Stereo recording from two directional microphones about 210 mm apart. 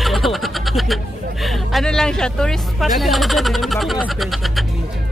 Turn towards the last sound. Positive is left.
turn(degrees=0)  # may be behind; listen again after turning